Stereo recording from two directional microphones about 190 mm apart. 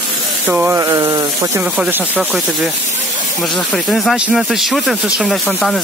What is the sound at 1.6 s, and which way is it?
Speech, 10° right (ahead or behind).